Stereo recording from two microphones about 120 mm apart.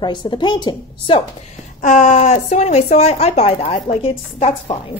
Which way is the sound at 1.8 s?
90° left.